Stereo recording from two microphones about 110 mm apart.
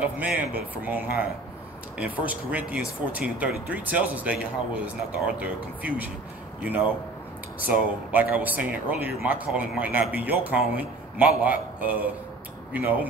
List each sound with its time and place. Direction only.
0.8 s a man's voice: 15° right (ahead or behind)